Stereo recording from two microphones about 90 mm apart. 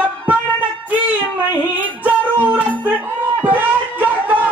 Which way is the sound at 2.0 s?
15° right (ahead or behind).